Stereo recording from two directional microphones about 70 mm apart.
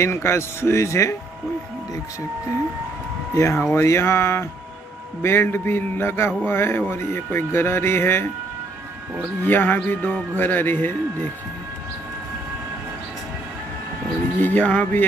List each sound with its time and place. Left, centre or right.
0.0 s a man's voice: left
3.3 s a man's voice: left
9.4 s music: left
14.4 s music: left